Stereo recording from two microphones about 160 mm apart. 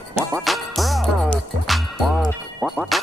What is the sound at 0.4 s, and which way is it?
Music, centre (ahead or behind).